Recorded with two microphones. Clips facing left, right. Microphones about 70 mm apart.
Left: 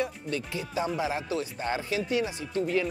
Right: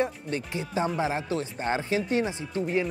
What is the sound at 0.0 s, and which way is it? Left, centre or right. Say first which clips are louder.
Speech: right 3 dB; right.